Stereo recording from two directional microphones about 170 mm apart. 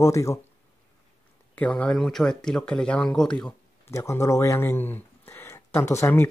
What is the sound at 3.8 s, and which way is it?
Speech, 15° left (ahead or behind).